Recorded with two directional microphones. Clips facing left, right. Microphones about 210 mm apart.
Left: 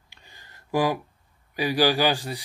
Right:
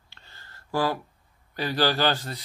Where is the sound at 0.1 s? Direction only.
15° left (ahead or behind).